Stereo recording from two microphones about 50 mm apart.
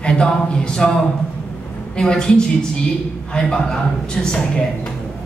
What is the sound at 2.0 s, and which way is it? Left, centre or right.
A woman's voice, centre.